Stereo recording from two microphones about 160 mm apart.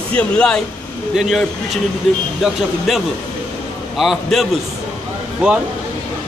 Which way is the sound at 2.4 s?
Centre (ahead or behind).